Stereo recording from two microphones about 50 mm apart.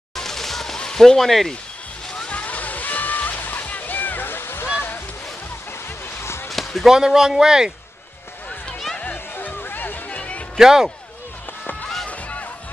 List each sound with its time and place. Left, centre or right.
0.1 s a sound: centre
0.7 s speech: centre
2.1 s slosh: left
4.7 s a sound: left
6.5 s speech: centre
8.9 s a sound: left
9.6 s music: left
10.0 s music: left
10.6 s speech: centre
12.1 s music: left